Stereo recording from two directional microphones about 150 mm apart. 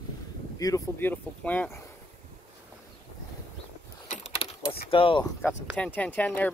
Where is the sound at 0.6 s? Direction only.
20° left (ahead or behind).